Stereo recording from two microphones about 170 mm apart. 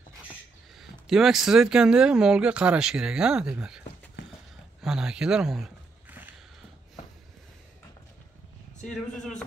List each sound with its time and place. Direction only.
0.7 s speech: centre (ahead or behind)
4.2 s a sound: 90° left
4.8 s speech: 5° right (ahead or behind)